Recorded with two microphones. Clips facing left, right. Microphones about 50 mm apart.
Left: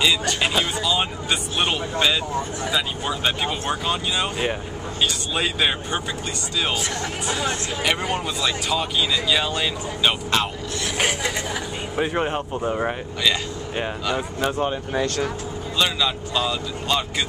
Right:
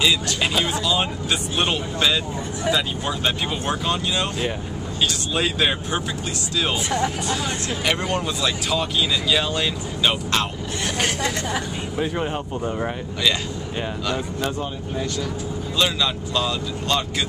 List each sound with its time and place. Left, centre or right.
0.0 s speech: centre
7.8 s speech: centre
14.0 s speech: centre
15.8 s speech: centre